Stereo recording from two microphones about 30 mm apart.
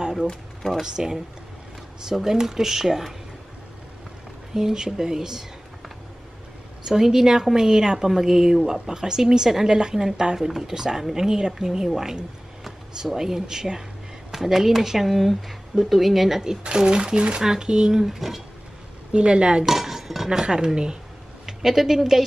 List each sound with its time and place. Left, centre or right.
0.3 s speech: centre
0.8 s a woman's voice: right
2.2 s a woman's voice: centre
4.6 s a woman's voice: centre
6.8 s a woman's voice: centre
16.7 s a woman's voice: right
17.4 s a woman's voice: centre
18.0 s a woman's voice: centre
19.1 s speech: right
19.6 s cutlery: centre
20.2 s a woman's voice: right
21.5 s speech: centre